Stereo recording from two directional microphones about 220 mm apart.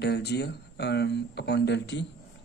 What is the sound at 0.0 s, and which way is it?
Speech, 50° left (ahead or behind).